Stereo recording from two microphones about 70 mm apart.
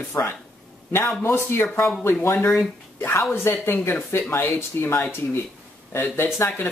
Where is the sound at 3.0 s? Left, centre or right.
Left.